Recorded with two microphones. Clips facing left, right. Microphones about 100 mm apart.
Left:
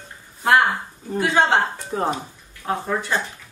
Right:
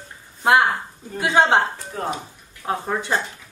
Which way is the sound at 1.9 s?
25° left (ahead or behind).